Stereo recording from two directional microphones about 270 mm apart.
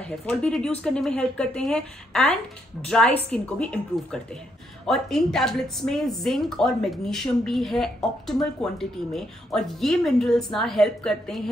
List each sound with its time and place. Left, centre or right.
0.0 s a woman's voice: centre